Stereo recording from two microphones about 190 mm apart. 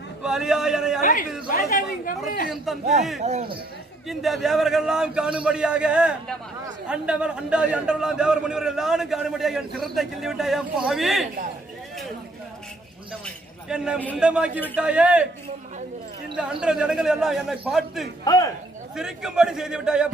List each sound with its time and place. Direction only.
0.2 s a sound: 5° right (ahead or behind)
1.5 s speech: 50° left (ahead or behind)
2.5 s a man's voice: centre (ahead or behind)
3.3 s speech: 35° right (ahead or behind)
4.1 s a man's voice: centre (ahead or behind)
13.7 s a man's voice: 5° right (ahead or behind)
13.9 s a man's voice: 10° left (ahead or behind)
14.2 s a man's voice: 5° right (ahead or behind)
16.3 s a man's voice: 5° right (ahead or behind)
18.2 s speech: 20° left (ahead or behind)
18.9 s a man's voice: 5° right (ahead or behind)